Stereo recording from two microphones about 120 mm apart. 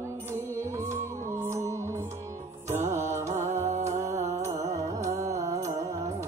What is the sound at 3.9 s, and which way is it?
Music, 25° right (ahead or behind).